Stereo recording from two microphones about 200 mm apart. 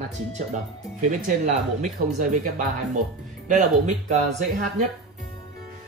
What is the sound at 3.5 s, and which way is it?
Speech, 40° right (ahead or behind).